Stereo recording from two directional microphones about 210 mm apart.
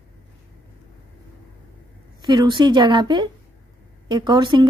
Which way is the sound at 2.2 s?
20° right (ahead or behind).